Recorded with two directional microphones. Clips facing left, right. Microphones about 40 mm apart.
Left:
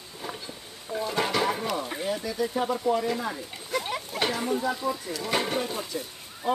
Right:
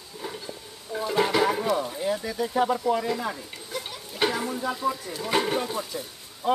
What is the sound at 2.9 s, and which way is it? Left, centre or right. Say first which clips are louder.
Speech: right 1 dB; centre.